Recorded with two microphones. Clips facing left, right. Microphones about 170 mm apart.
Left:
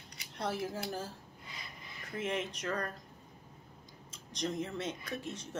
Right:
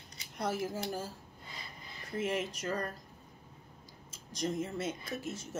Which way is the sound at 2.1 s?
Centre (ahead or behind).